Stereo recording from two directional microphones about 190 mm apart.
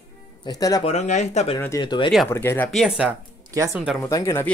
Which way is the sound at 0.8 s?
35° left (ahead or behind).